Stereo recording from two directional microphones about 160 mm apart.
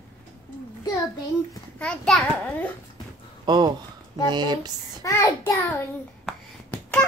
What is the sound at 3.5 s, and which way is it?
Speech, 25° right (ahead or behind).